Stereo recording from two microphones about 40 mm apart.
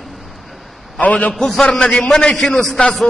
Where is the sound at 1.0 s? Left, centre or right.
Left.